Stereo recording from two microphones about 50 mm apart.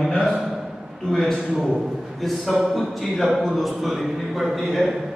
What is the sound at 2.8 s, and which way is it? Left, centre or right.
A man's voice, centre.